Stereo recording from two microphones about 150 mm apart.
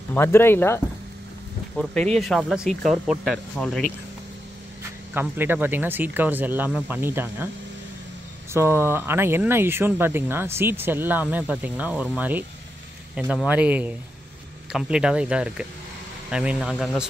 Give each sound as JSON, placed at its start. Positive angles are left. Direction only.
{"t": 0.1, "sound": "speech", "side_deg": 15}
{"t": 1.8, "sound": "speech", "side_deg": 10}
{"t": 5.1, "sound": "speech", "side_deg": -15}
{"t": 8.5, "sound": "speech", "side_deg": -15}